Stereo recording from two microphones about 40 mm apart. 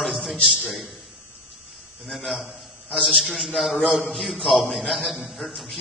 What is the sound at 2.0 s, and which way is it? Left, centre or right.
A man's voice, centre.